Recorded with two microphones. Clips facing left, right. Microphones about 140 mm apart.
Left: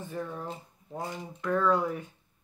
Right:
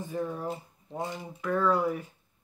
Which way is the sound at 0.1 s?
10° right (ahead or behind).